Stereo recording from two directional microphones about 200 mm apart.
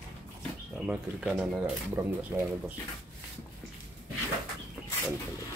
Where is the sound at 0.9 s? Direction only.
5° right (ahead or behind).